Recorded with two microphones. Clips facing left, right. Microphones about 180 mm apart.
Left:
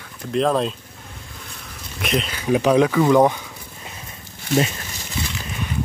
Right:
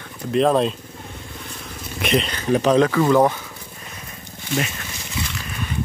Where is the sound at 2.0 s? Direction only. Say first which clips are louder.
Right 3 dB; centre (ahead or behind).